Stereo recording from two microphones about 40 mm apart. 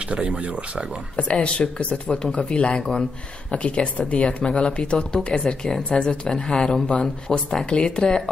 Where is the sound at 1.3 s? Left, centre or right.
Left.